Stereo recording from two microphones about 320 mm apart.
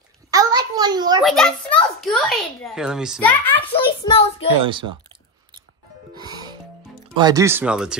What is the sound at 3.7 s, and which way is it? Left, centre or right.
Speech, centre.